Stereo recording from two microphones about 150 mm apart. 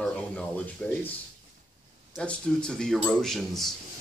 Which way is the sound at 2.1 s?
5° left (ahead or behind).